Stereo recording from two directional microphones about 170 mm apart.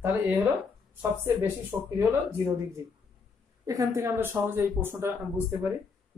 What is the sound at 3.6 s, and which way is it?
Speech, 20° right (ahead or behind).